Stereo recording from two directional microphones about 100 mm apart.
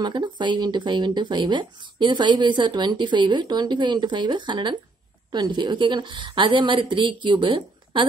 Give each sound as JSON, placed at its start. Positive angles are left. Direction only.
{"t": 0.0, "sound": "speech", "side_deg": -50}